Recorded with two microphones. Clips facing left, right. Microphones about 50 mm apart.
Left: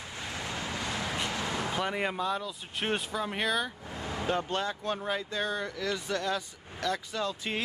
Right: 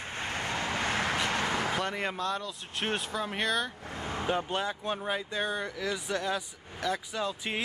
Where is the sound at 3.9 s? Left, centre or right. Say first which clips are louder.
Right 1 dB; right.